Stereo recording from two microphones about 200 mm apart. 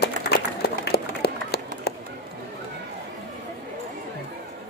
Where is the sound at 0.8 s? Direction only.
55° left (ahead or behind).